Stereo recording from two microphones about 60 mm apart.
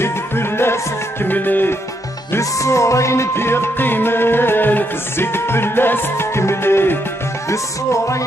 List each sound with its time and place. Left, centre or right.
0.0 s music: left
1.2 s music: left
2.6 s music: left
7.4 s music: left